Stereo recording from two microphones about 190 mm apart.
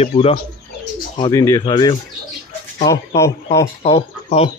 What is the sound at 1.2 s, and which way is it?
Speech, 20° left (ahead or behind).